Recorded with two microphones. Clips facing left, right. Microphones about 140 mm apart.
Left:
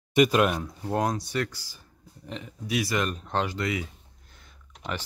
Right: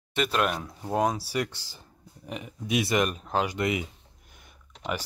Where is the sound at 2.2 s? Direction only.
15° right (ahead or behind).